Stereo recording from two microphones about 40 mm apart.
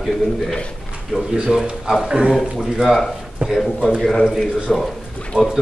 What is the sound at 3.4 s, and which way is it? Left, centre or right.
Speech, right.